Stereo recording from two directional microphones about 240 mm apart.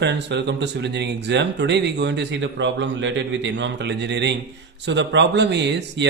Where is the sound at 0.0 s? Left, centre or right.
Right.